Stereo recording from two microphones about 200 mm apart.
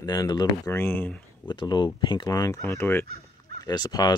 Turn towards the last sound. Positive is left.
turn(degrees=20)  # may be behind; listen again after turning